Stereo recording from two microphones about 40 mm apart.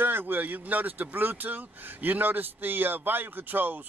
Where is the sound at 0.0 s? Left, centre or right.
Right.